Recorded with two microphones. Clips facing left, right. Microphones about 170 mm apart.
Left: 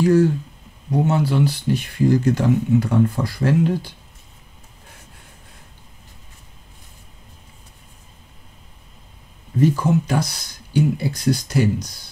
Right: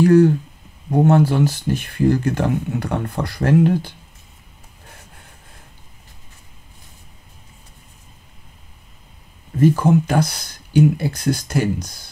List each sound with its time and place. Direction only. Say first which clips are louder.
0.0 s speech: right 3 dB; 60° right (ahead or behind)
9.6 s speech: right 3 dB; 55° right (ahead or behind)